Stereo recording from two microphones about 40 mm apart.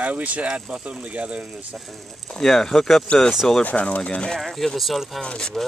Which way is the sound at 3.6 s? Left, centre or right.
Left.